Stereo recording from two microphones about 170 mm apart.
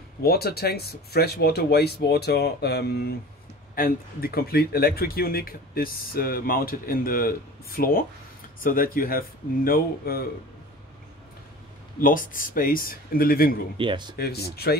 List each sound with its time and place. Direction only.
0.2 s speech: 65° left (ahead or behind)
3.7 s speech: 60° left (ahead or behind)
12.0 s speech: 55° left (ahead or behind)
13.7 s speech: 25° right (ahead or behind)
14.1 s speech: 70° left (ahead or behind)